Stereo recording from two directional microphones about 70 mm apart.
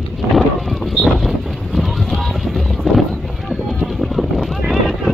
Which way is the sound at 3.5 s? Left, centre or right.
Centre.